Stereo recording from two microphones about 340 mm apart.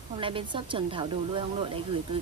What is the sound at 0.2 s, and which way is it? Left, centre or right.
Speech, centre.